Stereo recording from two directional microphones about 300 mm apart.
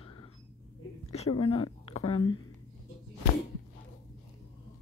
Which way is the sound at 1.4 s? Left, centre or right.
Centre.